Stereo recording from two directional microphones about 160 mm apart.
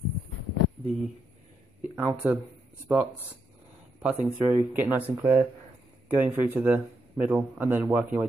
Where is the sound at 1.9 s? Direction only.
10° right (ahead or behind).